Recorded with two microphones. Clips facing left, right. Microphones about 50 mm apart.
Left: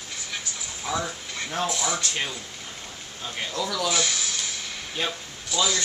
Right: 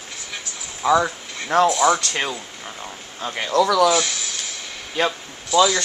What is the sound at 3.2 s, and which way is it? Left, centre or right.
Speech, right.